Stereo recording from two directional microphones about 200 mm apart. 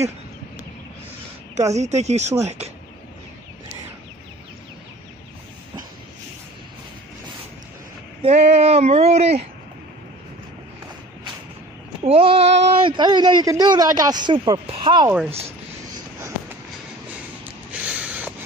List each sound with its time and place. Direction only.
1.5 s speech: 35° right (ahead or behind)
8.2 s speech: 30° right (ahead or behind)
12.0 s speech: 30° right (ahead or behind)
15.0 s speech: 10° right (ahead or behind)
17.8 s a sound: 5° right (ahead or behind)